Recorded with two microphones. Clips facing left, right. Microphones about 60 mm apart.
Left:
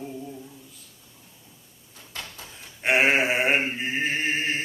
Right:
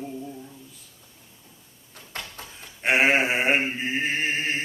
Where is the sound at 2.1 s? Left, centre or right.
Right.